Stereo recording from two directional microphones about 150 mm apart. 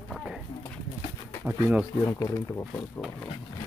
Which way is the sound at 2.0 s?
15° left (ahead or behind).